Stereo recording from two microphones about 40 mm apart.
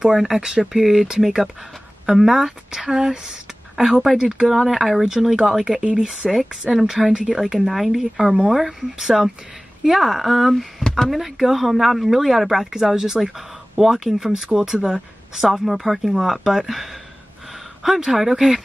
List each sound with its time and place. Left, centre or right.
0.0 s speech: centre
6.2 s speech: centre
11.1 s speech: centre